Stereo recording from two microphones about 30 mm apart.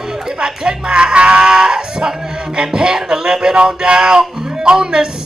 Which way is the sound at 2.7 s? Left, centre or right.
Right.